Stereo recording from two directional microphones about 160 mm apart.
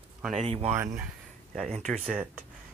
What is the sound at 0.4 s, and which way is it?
Speech, 40° right (ahead or behind).